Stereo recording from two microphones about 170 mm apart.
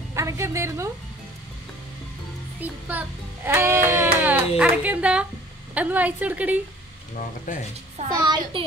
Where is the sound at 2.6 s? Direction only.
10° right (ahead or behind).